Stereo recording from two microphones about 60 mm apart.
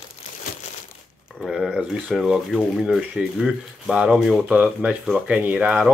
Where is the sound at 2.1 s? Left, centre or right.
Centre.